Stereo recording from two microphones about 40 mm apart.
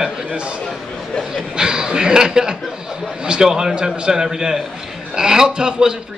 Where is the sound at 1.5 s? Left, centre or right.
Centre.